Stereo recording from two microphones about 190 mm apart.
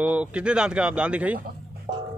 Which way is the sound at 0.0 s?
5° right (ahead or behind).